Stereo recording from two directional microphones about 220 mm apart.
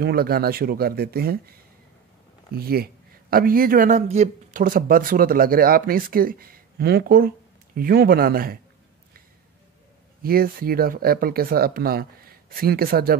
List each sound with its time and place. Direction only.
0.0 s speech: 45° right (ahead or behind)
2.5 s speech: 45° right (ahead or behind)
10.2 s speech: 40° right (ahead or behind)